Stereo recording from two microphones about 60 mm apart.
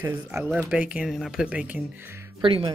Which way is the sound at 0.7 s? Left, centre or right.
Centre.